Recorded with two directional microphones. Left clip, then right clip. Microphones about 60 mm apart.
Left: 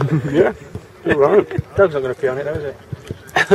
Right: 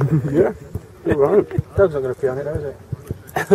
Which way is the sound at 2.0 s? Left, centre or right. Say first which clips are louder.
Left 2 dB; left.